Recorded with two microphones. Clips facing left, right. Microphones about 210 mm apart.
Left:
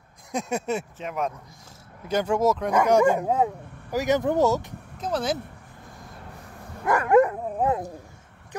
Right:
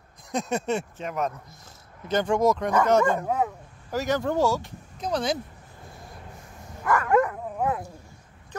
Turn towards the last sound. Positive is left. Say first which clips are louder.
# left 3 dB
turn(degrees=20)  # may be behind; listen again after turning